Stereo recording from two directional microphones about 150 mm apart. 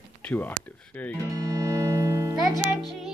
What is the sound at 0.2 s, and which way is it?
Speech, 10° left (ahead or behind).